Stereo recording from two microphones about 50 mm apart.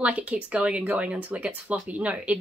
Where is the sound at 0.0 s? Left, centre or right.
Right.